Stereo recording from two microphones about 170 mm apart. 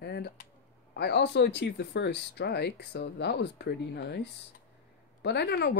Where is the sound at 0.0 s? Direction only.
75° left (ahead or behind).